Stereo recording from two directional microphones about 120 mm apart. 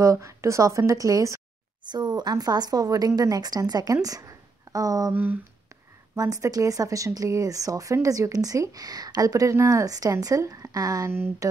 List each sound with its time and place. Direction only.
0.0 s speech: 25° right (ahead or behind)
5.1 s speech: 15° right (ahead or behind)
6.1 s speech: 30° right (ahead or behind)
11.1 s speech: 20° right (ahead or behind)